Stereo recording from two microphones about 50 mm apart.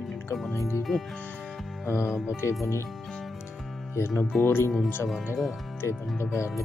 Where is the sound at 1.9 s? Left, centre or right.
Left.